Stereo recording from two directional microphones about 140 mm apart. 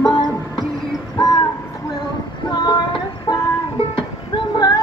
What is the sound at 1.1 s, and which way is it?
Music, 30° left (ahead or behind).